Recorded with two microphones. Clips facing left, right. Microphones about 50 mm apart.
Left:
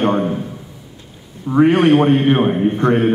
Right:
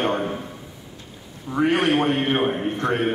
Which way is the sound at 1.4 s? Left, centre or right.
Left.